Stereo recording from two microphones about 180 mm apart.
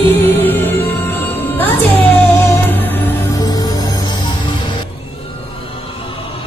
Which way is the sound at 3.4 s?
20° left (ahead or behind).